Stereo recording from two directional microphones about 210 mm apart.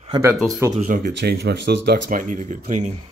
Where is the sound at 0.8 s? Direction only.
40° right (ahead or behind).